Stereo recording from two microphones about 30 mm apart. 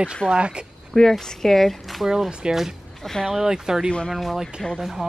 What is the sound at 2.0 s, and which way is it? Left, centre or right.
Speech, centre.